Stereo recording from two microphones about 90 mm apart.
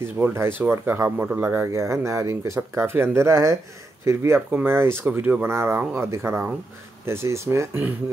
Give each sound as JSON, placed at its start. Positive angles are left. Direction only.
{"t": 0.0, "sound": "speech", "side_deg": -30}